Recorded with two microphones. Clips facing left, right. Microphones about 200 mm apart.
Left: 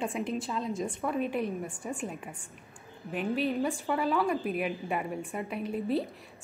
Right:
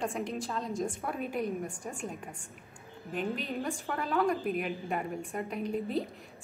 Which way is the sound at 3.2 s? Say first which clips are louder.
Left 5 dB; centre (ahead or behind).